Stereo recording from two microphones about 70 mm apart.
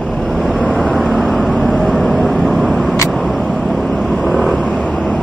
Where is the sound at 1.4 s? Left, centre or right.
Centre.